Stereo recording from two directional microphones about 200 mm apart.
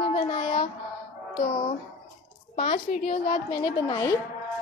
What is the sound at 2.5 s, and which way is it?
Music, 35° left (ahead or behind).